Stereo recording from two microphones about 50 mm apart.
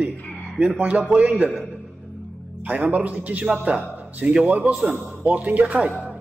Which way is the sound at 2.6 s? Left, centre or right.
Right.